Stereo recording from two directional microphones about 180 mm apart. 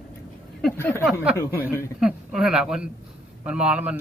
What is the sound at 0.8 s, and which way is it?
Speech, 15° left (ahead or behind).